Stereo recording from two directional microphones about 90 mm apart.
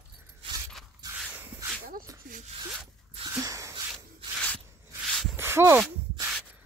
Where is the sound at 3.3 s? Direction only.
40° right (ahead or behind).